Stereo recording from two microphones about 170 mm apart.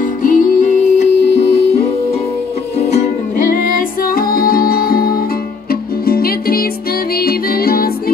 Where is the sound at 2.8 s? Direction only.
40° left (ahead or behind).